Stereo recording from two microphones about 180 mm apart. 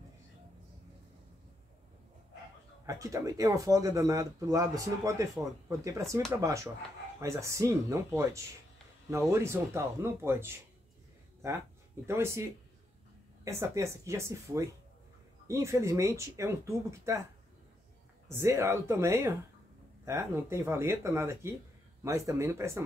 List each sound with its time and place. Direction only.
2.9 s speech: 20° right (ahead or behind)
12.1 s speech: 15° right (ahead or behind)
18.3 s speech: 15° right (ahead or behind)